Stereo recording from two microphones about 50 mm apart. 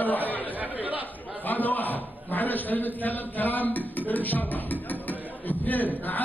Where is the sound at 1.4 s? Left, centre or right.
Left.